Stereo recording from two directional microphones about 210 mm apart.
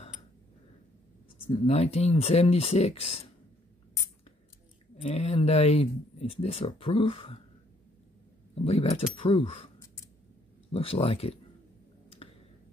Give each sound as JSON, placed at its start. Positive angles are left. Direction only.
{"t": 1.7, "sound": "speech", "side_deg": 30}
{"t": 5.0, "sound": "speech", "side_deg": 30}
{"t": 8.6, "sound": "speech", "side_deg": 30}
{"t": 10.7, "sound": "speech", "side_deg": 30}
{"t": 12.2, "sound": "a sound", "side_deg": 30}